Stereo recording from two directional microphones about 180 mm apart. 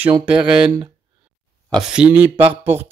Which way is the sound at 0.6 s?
25° right (ahead or behind).